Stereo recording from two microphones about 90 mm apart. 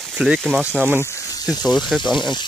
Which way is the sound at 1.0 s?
40° left (ahead or behind).